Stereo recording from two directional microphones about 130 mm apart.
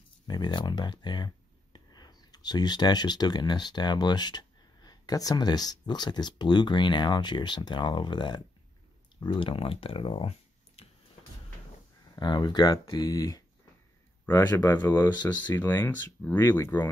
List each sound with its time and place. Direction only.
0.3 s speech: 35° left (ahead or behind)
10.8 s a sound: 50° left (ahead or behind)
12.2 s speech: 35° left (ahead or behind)
14.5 s speech: 30° left (ahead or behind)
14.8 s speech: 15° left (ahead or behind)